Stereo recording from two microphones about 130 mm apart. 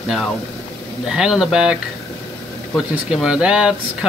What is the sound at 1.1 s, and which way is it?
Speech, 5° right (ahead or behind).